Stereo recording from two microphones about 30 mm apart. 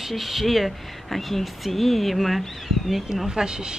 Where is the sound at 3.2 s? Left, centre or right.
Right.